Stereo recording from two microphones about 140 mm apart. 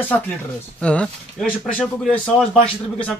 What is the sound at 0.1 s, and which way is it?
A man's voice, 10° left (ahead or behind).